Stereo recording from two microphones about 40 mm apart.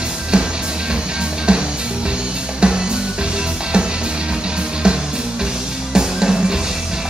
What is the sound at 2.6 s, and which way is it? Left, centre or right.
Music, right.